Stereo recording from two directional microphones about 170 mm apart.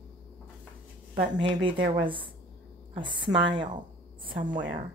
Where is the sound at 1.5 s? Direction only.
30° right (ahead or behind).